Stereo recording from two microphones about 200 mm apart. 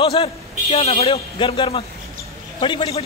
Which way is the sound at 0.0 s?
30° left (ahead or behind).